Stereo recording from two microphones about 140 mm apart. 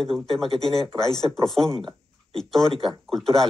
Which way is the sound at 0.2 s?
Centre (ahead or behind).